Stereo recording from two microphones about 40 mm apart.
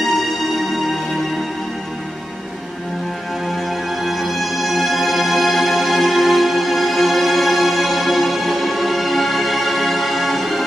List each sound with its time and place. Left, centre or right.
0.0 s music: centre
4.0 s music: centre